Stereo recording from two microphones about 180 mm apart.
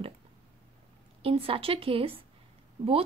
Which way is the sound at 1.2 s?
30° right (ahead or behind).